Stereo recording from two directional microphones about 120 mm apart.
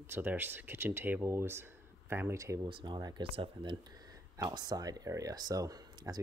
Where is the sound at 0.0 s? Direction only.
15° right (ahead or behind).